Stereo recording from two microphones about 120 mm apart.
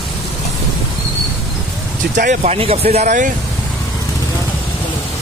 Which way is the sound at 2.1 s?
80° right.